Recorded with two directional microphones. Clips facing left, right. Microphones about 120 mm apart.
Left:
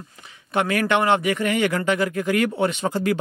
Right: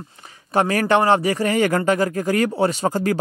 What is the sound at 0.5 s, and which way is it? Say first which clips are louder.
A man's voice: right 3 dB; 35° right (ahead or behind).